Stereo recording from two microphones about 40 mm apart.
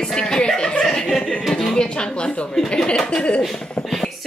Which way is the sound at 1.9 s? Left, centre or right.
Left.